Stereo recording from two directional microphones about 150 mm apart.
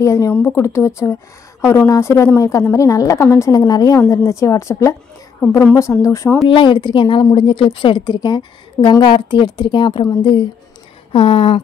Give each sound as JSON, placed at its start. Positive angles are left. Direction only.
{"t": 0.0, "sound": "a woman's voice", "side_deg": 20}
{"t": 6.5, "sound": "a woman's voice", "side_deg": 35}